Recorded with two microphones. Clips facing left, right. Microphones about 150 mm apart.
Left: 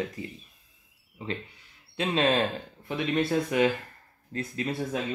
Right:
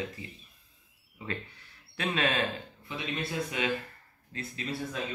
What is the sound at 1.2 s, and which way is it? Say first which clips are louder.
Speech: left 3 dB; 30° left (ahead or behind).